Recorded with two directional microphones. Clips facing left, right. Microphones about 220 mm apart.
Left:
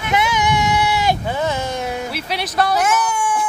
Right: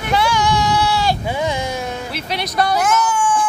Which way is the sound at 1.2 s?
15° right (ahead or behind).